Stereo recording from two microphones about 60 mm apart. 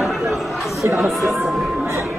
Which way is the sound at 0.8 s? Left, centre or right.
Right.